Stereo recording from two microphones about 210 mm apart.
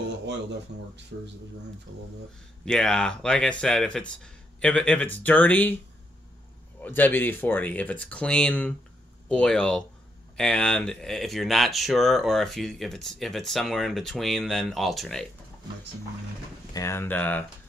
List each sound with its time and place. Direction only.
0.3 s speech: 55° right (ahead or behind)
2.6 s speech: 5° left (ahead or behind)
6.8 s speech: 10° left (ahead or behind)
16.7 s speech: 15° left (ahead or behind)